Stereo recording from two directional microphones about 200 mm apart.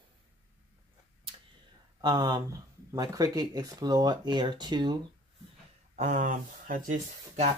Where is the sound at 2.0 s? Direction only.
20° right (ahead or behind).